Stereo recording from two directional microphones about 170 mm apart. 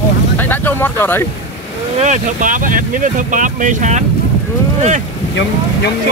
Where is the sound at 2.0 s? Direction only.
45° right (ahead or behind).